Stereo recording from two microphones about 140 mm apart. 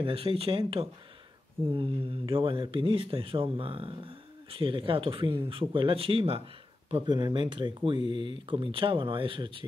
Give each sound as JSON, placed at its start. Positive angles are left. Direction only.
{"t": 0.0, "sound": "speech", "side_deg": -40}